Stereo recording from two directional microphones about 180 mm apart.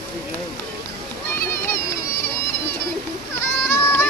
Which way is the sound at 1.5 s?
15° left (ahead or behind).